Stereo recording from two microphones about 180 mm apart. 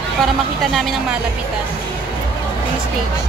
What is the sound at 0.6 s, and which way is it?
Speech, centre (ahead or behind).